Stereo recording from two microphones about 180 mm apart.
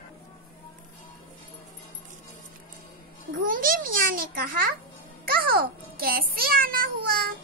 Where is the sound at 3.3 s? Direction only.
50° right (ahead or behind).